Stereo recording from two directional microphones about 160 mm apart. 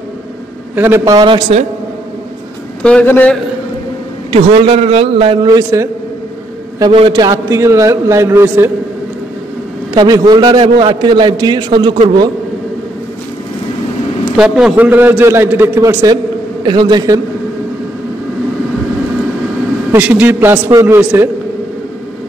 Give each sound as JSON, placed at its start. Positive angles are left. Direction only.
{"t": 0.7, "sound": "a man's voice", "side_deg": -15}
{"t": 2.8, "sound": "a man's voice", "side_deg": 10}
{"t": 4.3, "sound": "a man's voice", "side_deg": -40}
{"t": 9.9, "sound": "a man's voice", "side_deg": -25}
{"t": 14.3, "sound": "a man's voice", "side_deg": -5}
{"t": 19.9, "sound": "a man's voice", "side_deg": -10}